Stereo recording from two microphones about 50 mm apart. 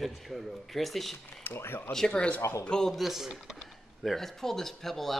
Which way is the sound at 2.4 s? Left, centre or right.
Left.